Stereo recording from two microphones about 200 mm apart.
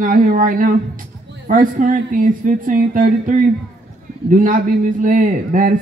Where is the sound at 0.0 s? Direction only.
40° right (ahead or behind).